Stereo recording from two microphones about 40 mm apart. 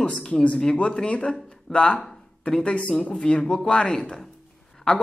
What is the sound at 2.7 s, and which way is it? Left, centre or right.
Speech, left.